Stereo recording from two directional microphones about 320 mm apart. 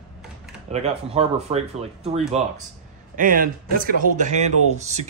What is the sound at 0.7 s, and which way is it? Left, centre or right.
Speech, centre.